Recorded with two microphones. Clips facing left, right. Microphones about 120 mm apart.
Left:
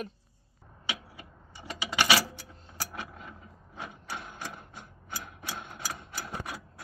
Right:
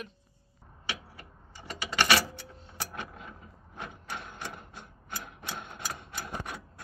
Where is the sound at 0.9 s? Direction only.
10° left (ahead or behind).